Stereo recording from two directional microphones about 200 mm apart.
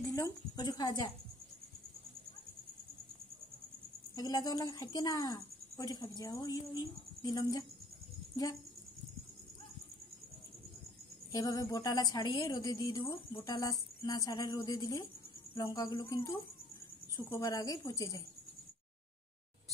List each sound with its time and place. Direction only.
0.0 s a woman's voice: 15° left (ahead or behind)
4.1 s a woman's voice: 20° left (ahead or behind)
11.3 s a woman's voice: 20° left (ahead or behind)